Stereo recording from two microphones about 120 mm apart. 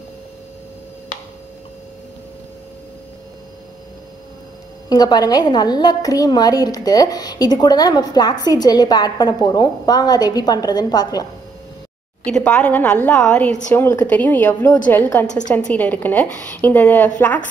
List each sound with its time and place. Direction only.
4.8 s a woman's voice: 35° left (ahead or behind)
12.3 s a woman's voice: 10° left (ahead or behind)